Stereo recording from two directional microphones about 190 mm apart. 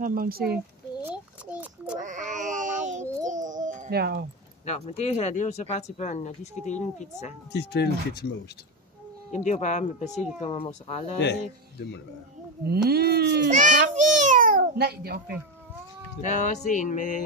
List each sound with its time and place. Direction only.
0.0 s speech: 50° right (ahead or behind)
1.0 s a sound: 10° right (ahead or behind)
2.0 s a sound: 40° right (ahead or behind)
4.6 s speech: 35° left (ahead or behind)
7.5 s speech: 60° left (ahead or behind)
9.3 s speech: 40° left (ahead or behind)
12.6 s speech: 55° right (ahead or behind)
13.7 s a child's voice: 45° right (ahead or behind)
16.2 s music: 40° left (ahead or behind)